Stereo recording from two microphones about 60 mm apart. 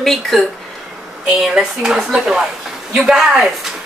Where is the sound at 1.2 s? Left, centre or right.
Centre.